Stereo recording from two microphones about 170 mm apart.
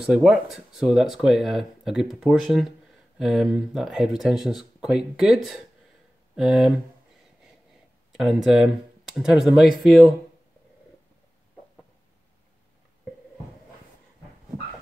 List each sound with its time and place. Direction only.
0.0 s speech: 5° right (ahead or behind)
8.1 s speech: centre (ahead or behind)